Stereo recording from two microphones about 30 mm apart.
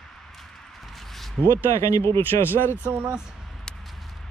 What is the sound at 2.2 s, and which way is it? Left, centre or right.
Speech, right.